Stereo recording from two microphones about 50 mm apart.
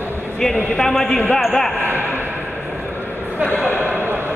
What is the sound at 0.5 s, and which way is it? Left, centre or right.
Speech, centre.